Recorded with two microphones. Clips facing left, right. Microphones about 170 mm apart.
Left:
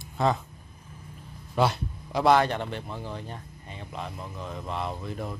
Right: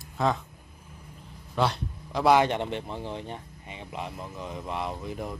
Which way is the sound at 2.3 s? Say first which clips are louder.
Right 1 dB; 20° right (ahead or behind).